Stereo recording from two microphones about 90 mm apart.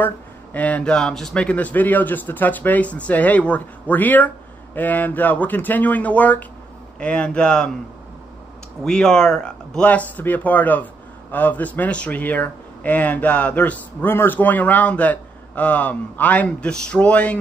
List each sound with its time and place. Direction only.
0.0 s speech: 20° left (ahead or behind)
8.8 s speech: 10° left (ahead or behind)